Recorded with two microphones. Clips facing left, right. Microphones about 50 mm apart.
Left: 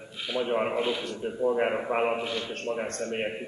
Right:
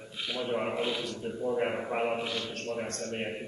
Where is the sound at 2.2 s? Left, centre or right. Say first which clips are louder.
Left 3 dB; centre.